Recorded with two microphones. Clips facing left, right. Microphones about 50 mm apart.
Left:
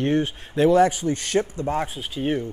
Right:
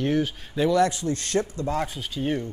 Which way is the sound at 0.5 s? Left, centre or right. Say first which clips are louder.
Left 4 dB; centre.